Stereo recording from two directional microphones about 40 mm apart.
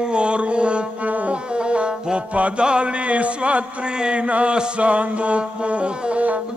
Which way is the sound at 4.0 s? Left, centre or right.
Right.